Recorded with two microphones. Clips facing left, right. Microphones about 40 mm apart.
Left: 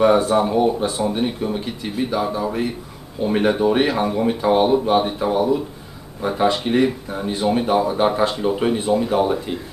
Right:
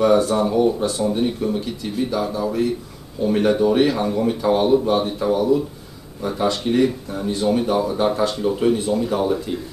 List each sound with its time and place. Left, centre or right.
0.0 s speech: left